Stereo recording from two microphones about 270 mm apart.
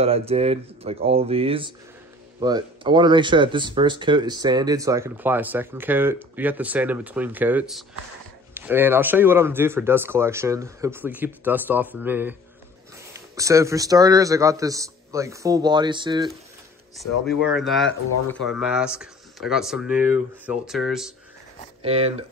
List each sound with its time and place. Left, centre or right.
0.0 s speech: right
16.9 s speech: centre
21.8 s speech: right